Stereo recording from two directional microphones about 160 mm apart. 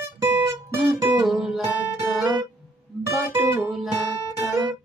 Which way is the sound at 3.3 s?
15° right (ahead or behind).